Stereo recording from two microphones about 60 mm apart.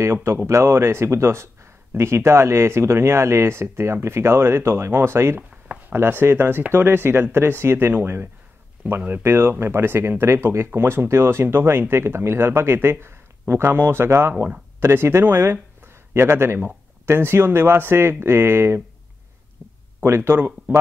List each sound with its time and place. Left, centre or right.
0.0 s speech: right
8.8 s speech: right
9.2 s speech: right
19.6 s a sound: right
20.0 s speech: right
20.3 s speech: right